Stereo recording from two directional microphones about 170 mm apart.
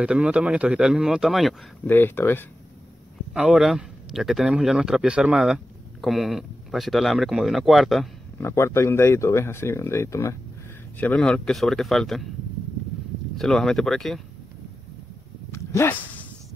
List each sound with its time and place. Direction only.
0.0 s a man's voice: 5° right (ahead or behind)
1.9 s speech: 10° left (ahead or behind)
3.3 s a man's voice: 5° right (ahead or behind)
8.4 s a man's voice: 15° left (ahead or behind)
13.4 s a man's voice: centre (ahead or behind)
15.5 s dog: 15° left (ahead or behind)